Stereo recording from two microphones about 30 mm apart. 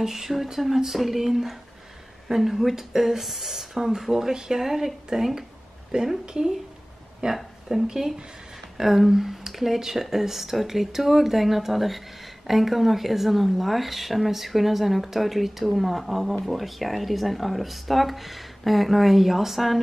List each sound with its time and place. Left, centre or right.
0.0 s speech: centre
5.9 s a woman's voice: right
7.2 s a woman's voice: right
7.7 s speech: centre